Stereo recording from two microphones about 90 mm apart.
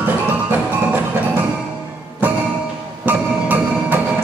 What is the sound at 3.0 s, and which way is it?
Music, 20° right (ahead or behind).